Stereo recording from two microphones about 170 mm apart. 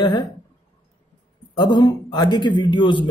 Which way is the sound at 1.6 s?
25° left (ahead or behind).